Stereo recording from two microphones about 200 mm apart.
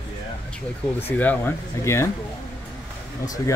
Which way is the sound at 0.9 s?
10° left (ahead or behind).